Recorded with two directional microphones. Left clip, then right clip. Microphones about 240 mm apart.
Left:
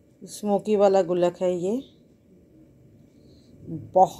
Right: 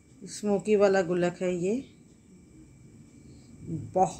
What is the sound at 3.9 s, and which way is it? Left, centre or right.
Speech, centre.